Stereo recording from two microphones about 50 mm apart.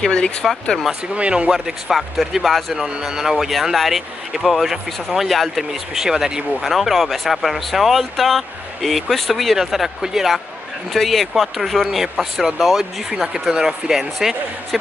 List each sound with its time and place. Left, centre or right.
0.1 s speech: centre
1.1 s speech: right
1.5 s speech: centre